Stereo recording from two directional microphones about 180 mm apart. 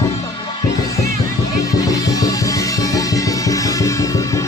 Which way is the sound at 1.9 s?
20° left (ahead or behind).